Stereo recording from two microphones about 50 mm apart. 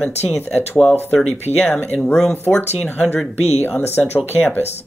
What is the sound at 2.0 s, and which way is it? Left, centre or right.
Speech, centre.